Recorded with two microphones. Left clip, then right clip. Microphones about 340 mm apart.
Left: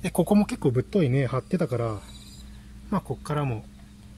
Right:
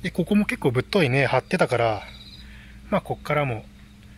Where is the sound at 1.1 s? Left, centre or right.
Right.